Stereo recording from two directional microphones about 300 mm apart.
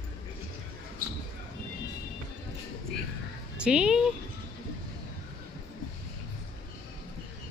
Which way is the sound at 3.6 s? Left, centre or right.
Centre.